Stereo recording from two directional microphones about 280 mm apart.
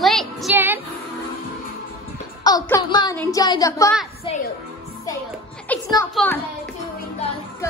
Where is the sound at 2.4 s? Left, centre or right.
Centre.